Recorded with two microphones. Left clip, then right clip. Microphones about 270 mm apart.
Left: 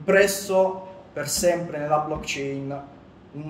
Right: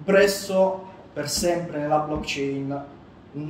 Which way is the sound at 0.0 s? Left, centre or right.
Centre.